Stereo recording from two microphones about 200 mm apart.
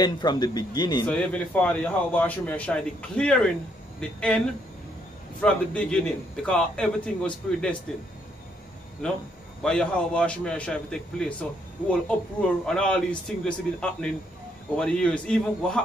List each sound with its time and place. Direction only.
0.0 s speech: 20° left (ahead or behind)
1.0 s a man's voice: 5° left (ahead or behind)
5.4 s a man's voice: 5° left (ahead or behind)
9.0 s a man's voice: 5° left (ahead or behind)
12.4 s a man's voice: 5° left (ahead or behind)